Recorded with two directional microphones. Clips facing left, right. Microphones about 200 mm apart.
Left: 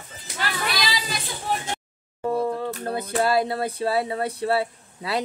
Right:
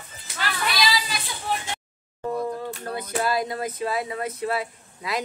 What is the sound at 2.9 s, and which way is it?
Speech, 30° left (ahead or behind).